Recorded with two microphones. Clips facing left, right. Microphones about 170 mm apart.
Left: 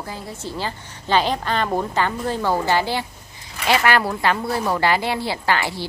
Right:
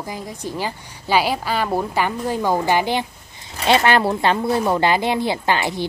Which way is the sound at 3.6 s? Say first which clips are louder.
Right 3 dB; 30° right (ahead or behind).